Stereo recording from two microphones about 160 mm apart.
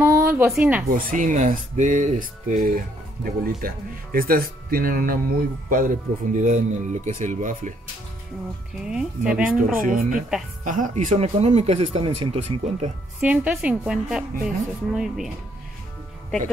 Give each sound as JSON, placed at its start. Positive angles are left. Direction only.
{"t": 0.0, "sound": "a sound", "side_deg": -15}
{"t": 0.6, "sound": "speech", "side_deg": -10}
{"t": 0.8, "sound": "speech", "side_deg": -60}
{"t": 8.8, "sound": "a woman's voice", "side_deg": -5}
{"t": 9.6, "sound": "speech", "side_deg": -60}
{"t": 13.2, "sound": "a woman's voice", "side_deg": -5}